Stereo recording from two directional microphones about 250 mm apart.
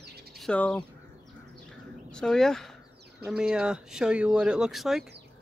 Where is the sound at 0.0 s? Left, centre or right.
Right.